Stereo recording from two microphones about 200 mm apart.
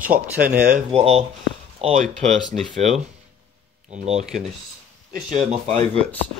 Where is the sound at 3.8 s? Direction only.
35° right (ahead or behind).